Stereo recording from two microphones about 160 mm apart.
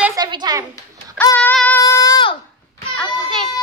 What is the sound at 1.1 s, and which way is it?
Speech, 10° left (ahead or behind).